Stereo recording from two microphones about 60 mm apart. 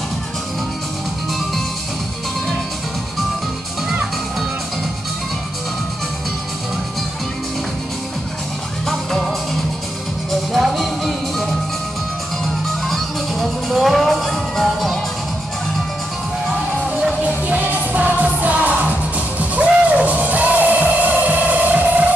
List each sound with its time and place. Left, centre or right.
8.8 s music: centre
10.5 s music: centre
12.8 s music: centre
17.2 s music: right